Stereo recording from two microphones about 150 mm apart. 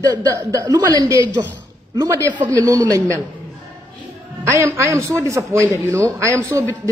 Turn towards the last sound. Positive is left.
turn(degrees=-20)  # may be behind; listen again after turning